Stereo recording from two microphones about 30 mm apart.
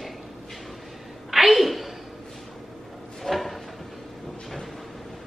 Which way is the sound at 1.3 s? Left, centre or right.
Centre.